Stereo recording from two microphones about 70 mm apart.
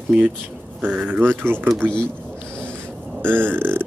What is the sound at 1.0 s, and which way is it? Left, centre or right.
Mantra, right.